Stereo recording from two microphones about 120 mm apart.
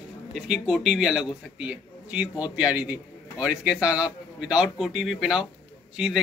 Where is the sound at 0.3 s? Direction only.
5° right (ahead or behind).